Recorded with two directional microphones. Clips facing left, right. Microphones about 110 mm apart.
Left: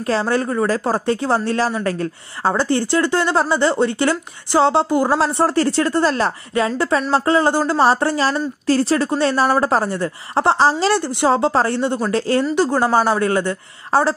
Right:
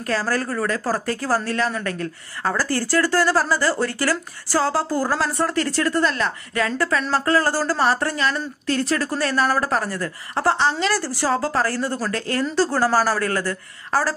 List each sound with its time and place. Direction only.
0.1 s speech: 25° left (ahead or behind)
11.0 s speech: 20° left (ahead or behind)